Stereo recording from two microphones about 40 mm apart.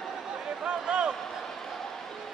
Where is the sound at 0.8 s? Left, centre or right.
Right.